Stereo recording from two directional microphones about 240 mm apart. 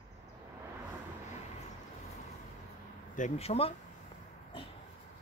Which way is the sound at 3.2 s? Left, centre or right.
Left.